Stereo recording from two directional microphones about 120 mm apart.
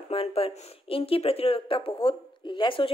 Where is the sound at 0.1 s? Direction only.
50° left (ahead or behind).